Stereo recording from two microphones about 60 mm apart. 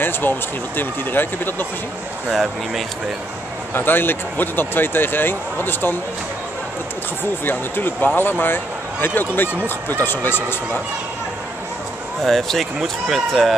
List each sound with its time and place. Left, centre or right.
0.0 s speech: left
2.3 s speech: centre
3.7 s speech: left
7.4 s speech: left
12.2 s speech: centre